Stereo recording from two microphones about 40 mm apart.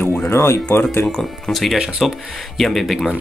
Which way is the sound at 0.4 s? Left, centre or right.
Left.